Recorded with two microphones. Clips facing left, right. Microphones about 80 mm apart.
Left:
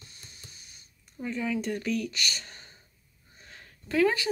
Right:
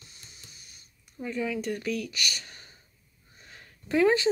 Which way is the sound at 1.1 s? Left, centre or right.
Centre.